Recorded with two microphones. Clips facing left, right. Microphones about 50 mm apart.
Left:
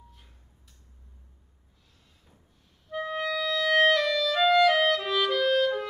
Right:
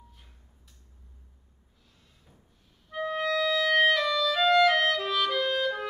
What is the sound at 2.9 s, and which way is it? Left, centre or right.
Clarinet, centre.